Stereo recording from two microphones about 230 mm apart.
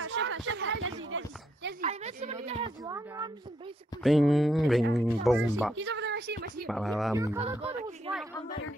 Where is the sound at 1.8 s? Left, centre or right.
Right.